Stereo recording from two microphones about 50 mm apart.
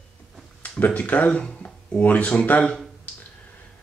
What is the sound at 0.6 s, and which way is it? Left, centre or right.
Speech, left.